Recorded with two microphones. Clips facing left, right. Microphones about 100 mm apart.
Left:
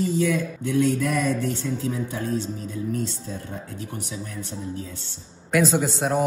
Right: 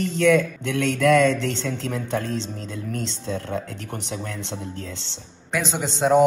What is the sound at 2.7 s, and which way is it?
Speech, 85° right.